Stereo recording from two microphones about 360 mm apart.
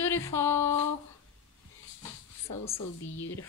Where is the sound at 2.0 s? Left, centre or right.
Centre.